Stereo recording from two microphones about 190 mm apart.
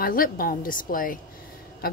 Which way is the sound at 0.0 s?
50° left (ahead or behind).